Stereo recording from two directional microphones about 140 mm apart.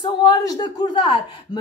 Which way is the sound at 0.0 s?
30° left (ahead or behind).